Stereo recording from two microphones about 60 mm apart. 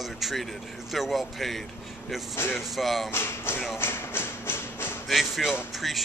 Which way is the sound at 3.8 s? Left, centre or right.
Left.